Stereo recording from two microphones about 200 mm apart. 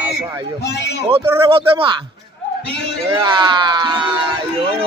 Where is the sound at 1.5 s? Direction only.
25° right (ahead or behind).